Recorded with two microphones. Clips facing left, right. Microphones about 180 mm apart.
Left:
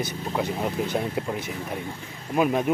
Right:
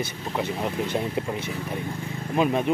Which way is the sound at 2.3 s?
10° left (ahead or behind).